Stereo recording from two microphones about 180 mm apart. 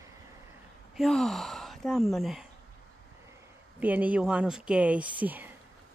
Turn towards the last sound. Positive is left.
turn(degrees=-10)  # may be behind; listen again after turning